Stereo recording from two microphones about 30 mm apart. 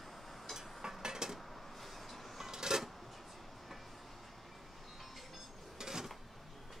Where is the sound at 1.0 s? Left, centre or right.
Right.